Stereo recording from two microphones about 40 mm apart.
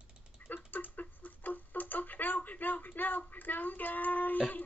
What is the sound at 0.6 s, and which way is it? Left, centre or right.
Tick-tock, left.